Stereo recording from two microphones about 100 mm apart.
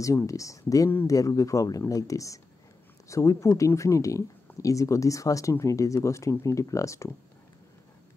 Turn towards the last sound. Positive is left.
turn(degrees=30)  # may be behind; listen again after turning